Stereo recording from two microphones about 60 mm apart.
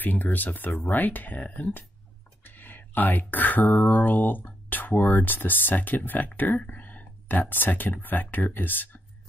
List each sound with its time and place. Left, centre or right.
0.0 s speech: left